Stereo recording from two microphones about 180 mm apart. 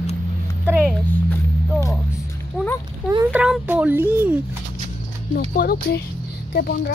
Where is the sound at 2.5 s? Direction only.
Centre (ahead or behind).